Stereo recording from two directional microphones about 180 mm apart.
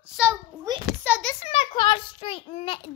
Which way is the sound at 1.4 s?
35° left (ahead or behind).